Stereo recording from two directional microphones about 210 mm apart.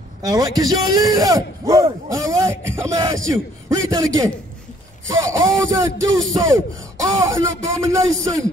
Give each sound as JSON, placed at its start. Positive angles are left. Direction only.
{"t": 0.2, "sound": "a man's voice", "side_deg": -15}